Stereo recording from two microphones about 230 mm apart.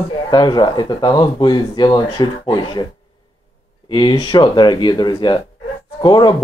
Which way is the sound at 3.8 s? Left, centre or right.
Centre.